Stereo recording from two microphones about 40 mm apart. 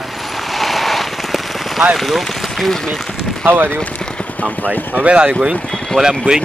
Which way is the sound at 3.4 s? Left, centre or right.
Right.